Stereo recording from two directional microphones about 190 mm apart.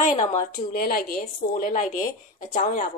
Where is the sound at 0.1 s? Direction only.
40° left (ahead or behind).